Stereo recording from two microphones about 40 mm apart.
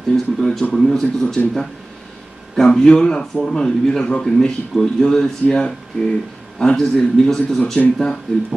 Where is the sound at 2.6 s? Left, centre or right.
Left.